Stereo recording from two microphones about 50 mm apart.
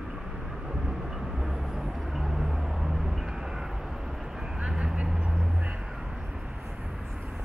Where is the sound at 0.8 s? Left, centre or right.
Centre.